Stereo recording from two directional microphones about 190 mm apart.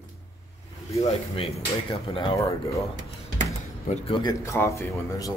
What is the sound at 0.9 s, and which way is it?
Speech, 30° left (ahead or behind).